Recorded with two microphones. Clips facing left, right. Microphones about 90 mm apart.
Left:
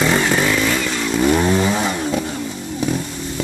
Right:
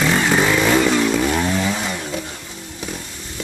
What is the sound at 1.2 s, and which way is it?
Chainsaw, 15° left (ahead or behind).